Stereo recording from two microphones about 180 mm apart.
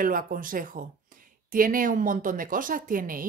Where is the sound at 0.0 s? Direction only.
50° right (ahead or behind).